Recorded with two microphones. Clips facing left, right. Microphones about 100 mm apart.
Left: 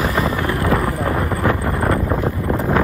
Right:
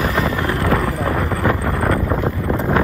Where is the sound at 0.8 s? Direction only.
10° left (ahead or behind).